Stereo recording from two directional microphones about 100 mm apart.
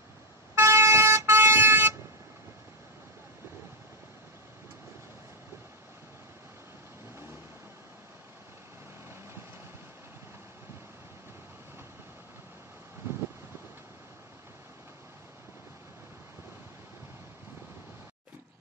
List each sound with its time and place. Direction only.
0.6 s vehicle: 25° right (ahead or behind)